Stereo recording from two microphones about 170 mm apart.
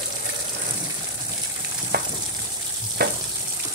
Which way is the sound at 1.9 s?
70° right (ahead or behind).